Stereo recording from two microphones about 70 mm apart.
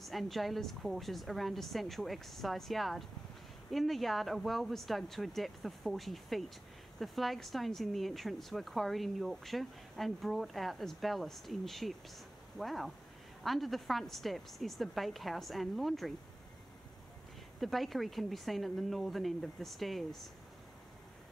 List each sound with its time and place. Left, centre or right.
0.0 s speech: centre
17.6 s speech: centre